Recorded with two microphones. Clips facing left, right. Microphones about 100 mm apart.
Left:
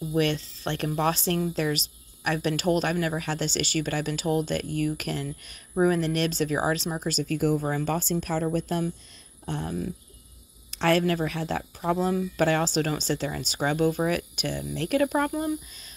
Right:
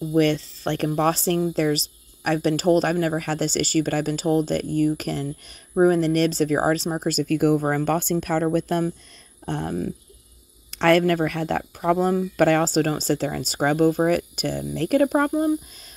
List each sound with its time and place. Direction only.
0.1 s speech: 35° right (ahead or behind)